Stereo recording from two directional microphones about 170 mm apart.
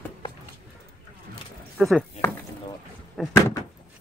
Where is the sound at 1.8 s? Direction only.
Centre (ahead or behind).